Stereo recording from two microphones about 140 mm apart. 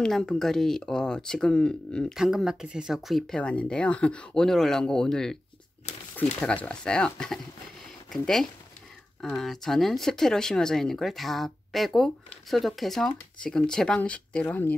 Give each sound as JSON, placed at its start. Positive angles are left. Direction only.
{"t": 0.0, "sound": "speech", "side_deg": 5}
{"t": 6.4, "sound": "speech", "side_deg": 10}